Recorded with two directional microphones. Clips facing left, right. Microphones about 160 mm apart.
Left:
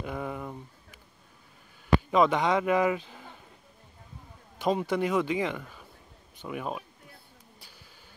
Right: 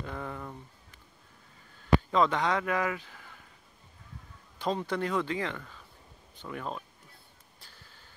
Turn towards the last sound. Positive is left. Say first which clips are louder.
# left 3 dB
turn(degrees=10)  # may be behind; listen again after turning